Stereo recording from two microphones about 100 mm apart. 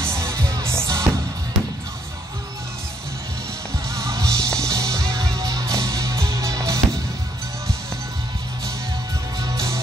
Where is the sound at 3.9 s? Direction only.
30° right (ahead or behind).